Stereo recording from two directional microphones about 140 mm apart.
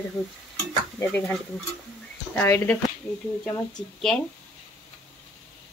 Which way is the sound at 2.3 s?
10° left (ahead or behind).